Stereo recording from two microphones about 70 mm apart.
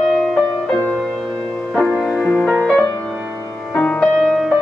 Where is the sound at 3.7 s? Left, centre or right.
Left.